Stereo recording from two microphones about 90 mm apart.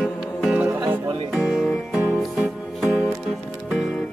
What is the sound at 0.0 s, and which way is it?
Music, centre (ahead or behind).